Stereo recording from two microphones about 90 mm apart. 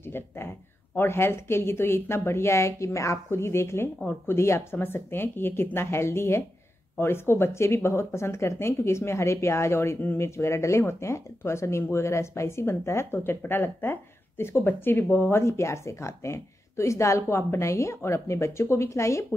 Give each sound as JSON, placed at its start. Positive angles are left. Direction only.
{"t": 0.9, "sound": "speech", "side_deg": 25}